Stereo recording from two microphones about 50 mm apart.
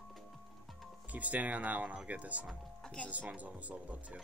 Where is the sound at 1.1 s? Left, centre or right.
Right.